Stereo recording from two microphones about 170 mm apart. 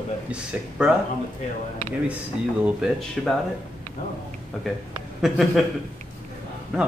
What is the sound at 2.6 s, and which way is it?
Speech, 5° right (ahead or behind).